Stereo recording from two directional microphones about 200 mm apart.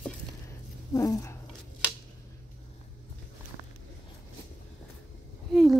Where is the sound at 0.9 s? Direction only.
15° left (ahead or behind).